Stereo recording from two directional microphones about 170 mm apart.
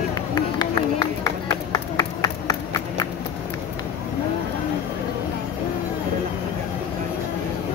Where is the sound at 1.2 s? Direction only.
20° left (ahead or behind).